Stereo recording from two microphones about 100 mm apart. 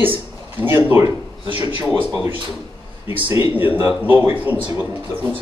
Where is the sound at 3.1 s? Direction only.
25° right (ahead or behind).